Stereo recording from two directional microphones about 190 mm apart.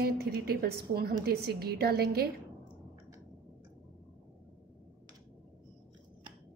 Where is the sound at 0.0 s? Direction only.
55° right (ahead or behind).